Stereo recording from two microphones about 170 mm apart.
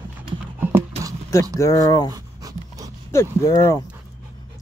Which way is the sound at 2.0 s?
20° right (ahead or behind).